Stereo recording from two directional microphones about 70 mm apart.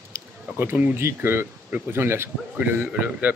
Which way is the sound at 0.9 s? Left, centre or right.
Right.